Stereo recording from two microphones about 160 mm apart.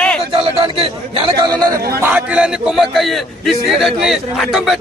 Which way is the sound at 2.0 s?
10° right (ahead or behind).